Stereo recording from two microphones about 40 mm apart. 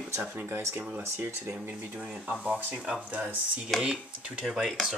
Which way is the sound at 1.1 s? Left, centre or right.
Right.